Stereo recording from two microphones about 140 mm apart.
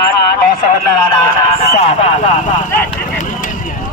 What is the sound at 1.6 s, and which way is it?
Music, 50° left (ahead or behind).